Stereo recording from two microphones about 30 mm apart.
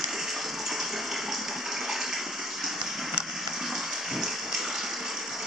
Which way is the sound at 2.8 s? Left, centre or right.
Centre.